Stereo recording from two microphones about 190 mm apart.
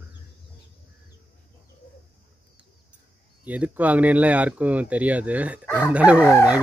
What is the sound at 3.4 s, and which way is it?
Speech, 5° right (ahead or behind).